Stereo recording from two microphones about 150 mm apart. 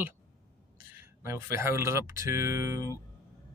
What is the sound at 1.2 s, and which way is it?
A man's voice, 15° right (ahead or behind).